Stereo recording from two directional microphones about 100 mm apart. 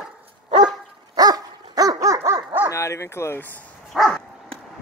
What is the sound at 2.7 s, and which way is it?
Bow-wow, 30° left (ahead or behind).